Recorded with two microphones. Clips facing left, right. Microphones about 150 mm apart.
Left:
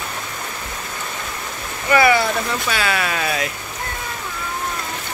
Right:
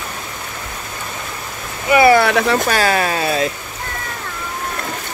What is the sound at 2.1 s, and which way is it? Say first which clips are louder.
Speech: right 6 dB; 70° right (ahead or behind).